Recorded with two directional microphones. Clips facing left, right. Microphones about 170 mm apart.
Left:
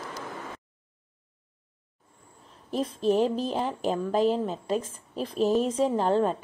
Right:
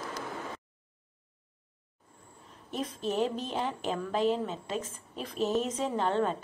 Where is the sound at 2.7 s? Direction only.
35° left (ahead or behind).